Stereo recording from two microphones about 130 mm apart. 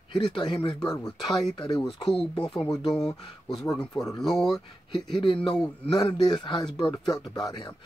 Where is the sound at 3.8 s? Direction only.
30° left (ahead or behind).